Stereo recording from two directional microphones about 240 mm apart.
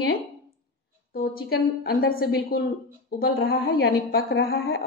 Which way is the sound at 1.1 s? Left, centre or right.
Left.